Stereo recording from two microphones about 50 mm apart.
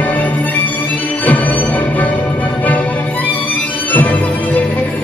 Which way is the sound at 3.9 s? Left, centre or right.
Left.